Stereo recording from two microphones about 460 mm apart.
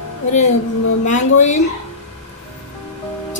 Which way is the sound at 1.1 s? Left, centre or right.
Centre.